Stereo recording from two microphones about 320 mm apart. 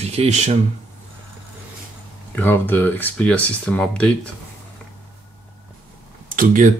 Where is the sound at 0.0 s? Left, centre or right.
Centre.